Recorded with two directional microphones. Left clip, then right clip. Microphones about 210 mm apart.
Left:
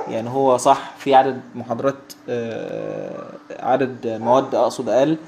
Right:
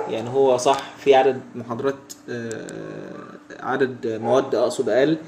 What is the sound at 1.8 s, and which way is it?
Speech, 15° left (ahead or behind).